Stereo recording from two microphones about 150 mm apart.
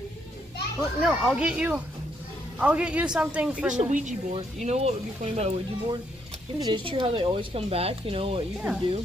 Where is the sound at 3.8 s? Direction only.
55° right (ahead or behind).